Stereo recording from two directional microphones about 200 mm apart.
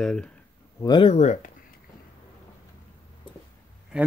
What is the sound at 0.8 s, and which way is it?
Speech, 20° left (ahead or behind).